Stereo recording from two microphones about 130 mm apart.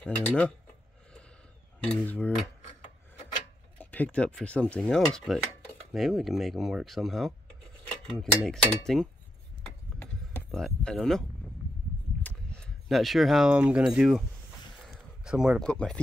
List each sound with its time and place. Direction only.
0.0 s speech: 10° left (ahead or behind)
1.8 s speech: 10° left (ahead or behind)
3.7 s speech: 15° left (ahead or behind)
10.5 s speech: 5° left (ahead or behind)
14.9 s a sound: 5° right (ahead or behind)
15.6 s speech: 5° left (ahead or behind)